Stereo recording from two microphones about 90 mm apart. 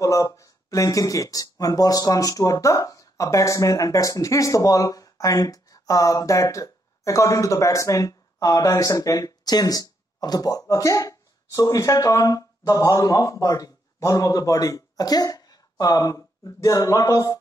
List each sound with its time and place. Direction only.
0.0 s speech: 35° left (ahead or behind)